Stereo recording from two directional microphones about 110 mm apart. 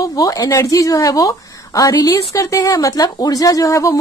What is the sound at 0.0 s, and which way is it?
A woman's voice, 35° left (ahead or behind).